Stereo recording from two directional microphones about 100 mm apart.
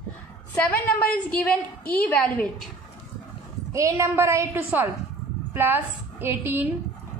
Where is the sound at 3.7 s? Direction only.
30° right (ahead or behind).